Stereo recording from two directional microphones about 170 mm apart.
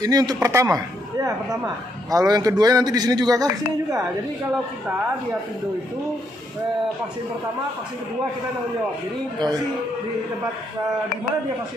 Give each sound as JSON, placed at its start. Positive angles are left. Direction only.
{"t": 0.0, "sound": "a man's voice", "side_deg": -20}